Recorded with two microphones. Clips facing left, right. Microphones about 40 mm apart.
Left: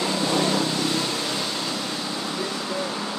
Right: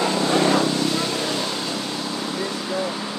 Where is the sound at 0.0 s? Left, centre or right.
Right.